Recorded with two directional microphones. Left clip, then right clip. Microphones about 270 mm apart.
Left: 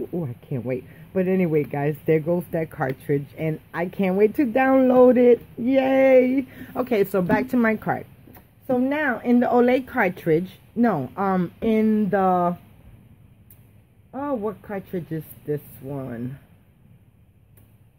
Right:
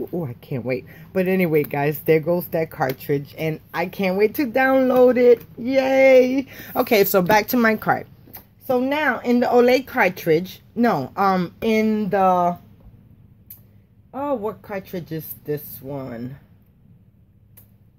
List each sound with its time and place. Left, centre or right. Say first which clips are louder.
0.1 s speech: right 2 dB; centre
6.5 s speech: right 5 dB; centre
14.1 s speech: right 3 dB; centre